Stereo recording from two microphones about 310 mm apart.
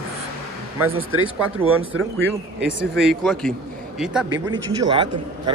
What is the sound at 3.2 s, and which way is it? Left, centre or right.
A man's voice, centre.